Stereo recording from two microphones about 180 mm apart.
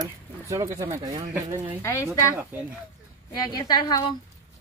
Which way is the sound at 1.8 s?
15° left (ahead or behind).